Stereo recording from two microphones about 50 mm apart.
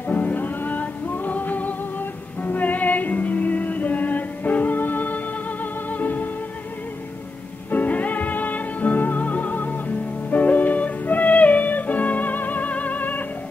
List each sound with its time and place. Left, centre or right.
0.1 s music: left
7.7 s music: left